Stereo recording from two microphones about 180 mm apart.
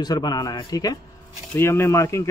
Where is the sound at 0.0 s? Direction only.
20° left (ahead or behind).